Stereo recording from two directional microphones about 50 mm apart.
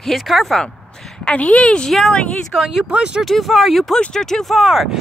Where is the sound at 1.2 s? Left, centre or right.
Left.